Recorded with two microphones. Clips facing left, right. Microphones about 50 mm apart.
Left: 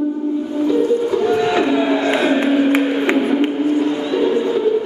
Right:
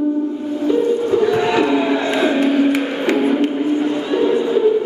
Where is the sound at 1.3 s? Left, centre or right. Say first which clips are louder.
Even; right.